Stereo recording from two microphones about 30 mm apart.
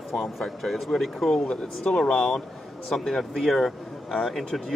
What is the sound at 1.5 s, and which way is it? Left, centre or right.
Speech, left.